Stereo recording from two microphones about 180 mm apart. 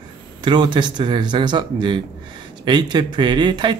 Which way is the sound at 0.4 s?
25° right (ahead or behind).